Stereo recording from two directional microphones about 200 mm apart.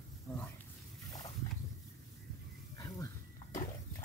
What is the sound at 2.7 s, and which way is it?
Dog, 15° left (ahead or behind).